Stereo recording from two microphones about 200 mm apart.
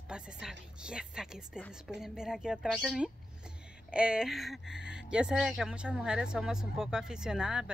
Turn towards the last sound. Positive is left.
turn(degrees=-5)  # may be behind; listen again after turning